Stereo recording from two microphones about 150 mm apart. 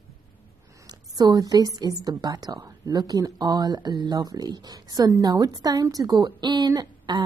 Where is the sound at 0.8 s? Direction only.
25° right (ahead or behind).